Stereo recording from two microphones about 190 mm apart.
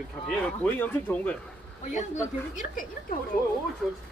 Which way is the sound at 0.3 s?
10° left (ahead or behind).